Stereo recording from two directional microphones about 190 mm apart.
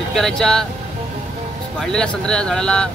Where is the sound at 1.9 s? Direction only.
5° left (ahead or behind).